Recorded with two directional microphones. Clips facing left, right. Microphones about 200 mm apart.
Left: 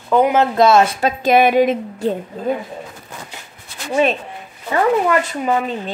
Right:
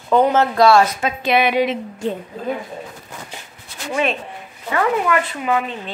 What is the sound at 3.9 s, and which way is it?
Speech, 40° left (ahead or behind).